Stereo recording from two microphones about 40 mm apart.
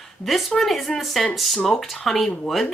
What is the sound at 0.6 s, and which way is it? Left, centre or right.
Speech, centre.